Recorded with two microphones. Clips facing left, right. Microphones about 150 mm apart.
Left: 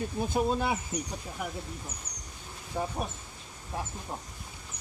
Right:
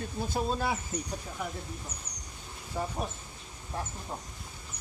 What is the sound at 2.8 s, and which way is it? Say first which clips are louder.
Speech: left 1 dB; 10° left (ahead or behind).